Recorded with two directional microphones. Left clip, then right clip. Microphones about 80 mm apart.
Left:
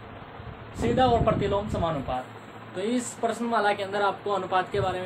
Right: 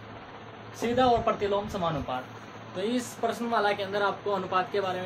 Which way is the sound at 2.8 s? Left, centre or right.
Left.